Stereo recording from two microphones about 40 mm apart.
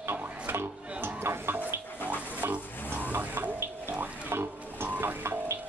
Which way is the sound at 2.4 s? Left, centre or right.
Right.